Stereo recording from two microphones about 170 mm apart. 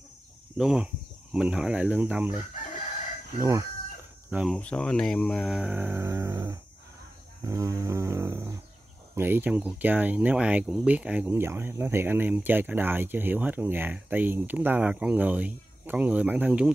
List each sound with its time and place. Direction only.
0.6 s speech: 5° right (ahead or behind)
4.6 s speech: 5° left (ahead or behind)